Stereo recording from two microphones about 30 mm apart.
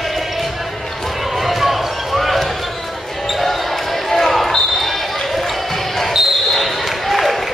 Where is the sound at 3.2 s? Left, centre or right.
Centre.